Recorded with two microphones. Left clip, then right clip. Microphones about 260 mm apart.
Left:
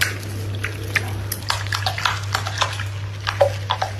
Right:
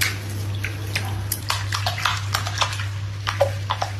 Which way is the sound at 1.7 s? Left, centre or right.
Centre.